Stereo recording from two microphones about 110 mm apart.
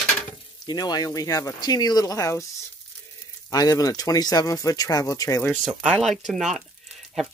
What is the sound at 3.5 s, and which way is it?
Speech, 35° left (ahead or behind).